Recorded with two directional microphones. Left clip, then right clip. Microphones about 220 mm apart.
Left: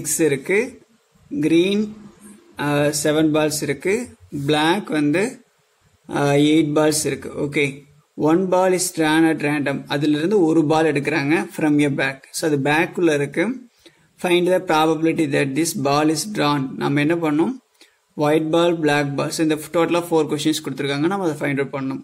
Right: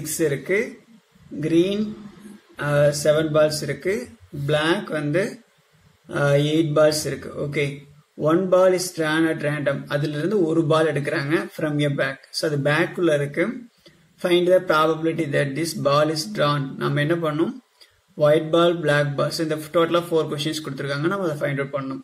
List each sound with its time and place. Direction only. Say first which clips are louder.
0.2 s speech: left 3 dB; 45° left (ahead or behind)